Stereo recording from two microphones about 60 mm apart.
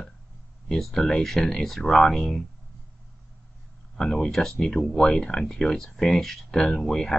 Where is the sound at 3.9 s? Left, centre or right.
Centre.